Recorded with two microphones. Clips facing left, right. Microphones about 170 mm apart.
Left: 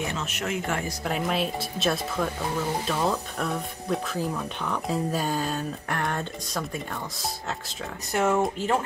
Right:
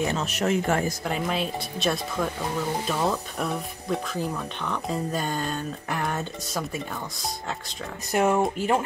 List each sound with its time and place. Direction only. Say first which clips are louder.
0.1 s speech: right 5 dB; 35° right (ahead or behind)
1.0 s speech: left 1 dB; centre (ahead or behind)
8.1 s speech: right 2 dB; 15° right (ahead or behind)